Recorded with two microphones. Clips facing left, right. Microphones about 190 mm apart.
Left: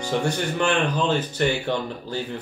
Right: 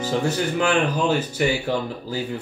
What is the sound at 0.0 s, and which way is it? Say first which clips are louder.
Speech: right 2 dB; 5° right (ahead or behind).